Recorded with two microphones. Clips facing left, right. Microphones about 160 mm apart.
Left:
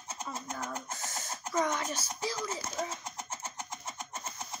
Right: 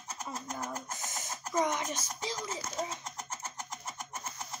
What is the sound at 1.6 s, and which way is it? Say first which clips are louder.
A child's voice: even; 20° right (ahead or behind).